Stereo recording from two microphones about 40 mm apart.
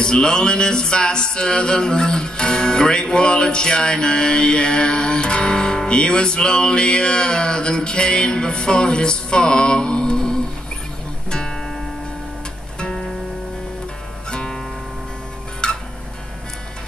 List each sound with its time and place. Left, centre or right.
0.0 s music: centre
14.3 s music: left
15.6 s music: left